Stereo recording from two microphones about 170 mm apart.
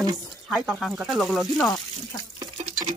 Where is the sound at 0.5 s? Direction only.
Centre (ahead or behind).